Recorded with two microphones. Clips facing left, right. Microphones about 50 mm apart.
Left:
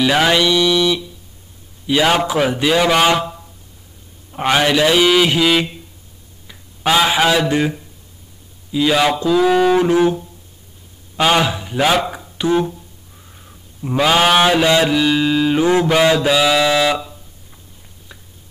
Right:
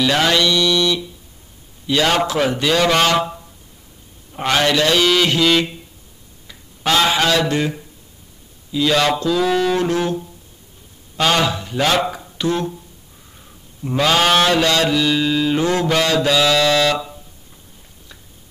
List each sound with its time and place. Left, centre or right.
0.0 s mantra: centre
4.3 s mantra: centre
6.4 s speech: centre
8.7 s mantra: centre
12.4 s speech: centre
13.8 s mantra: centre